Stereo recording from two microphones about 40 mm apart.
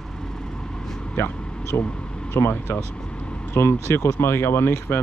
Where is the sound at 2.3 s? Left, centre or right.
Left.